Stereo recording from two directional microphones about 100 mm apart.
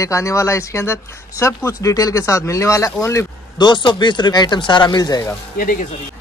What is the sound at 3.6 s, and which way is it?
Speech, 50° left (ahead or behind).